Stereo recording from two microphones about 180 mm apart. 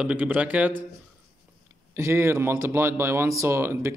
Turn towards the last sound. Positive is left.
turn(degrees=-15)  # may be behind; listen again after turning